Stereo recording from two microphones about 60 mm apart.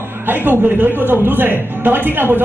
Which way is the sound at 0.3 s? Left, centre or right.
Right.